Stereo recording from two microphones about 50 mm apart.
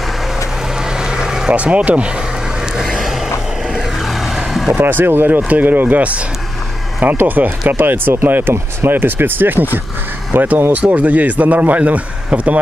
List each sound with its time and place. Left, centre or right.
0.8 s vehicle: centre
1.5 s speech: right
2.7 s vehicle: centre
4.7 s speech: right